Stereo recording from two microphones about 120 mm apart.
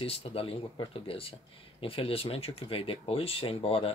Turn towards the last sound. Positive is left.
turn(degrees=50)  # may be behind; listen again after turning